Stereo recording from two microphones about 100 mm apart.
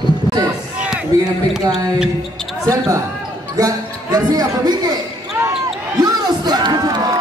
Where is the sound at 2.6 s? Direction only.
35° right (ahead or behind).